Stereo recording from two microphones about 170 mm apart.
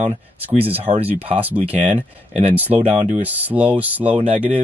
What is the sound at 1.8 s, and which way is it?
Speech, 40° right (ahead or behind).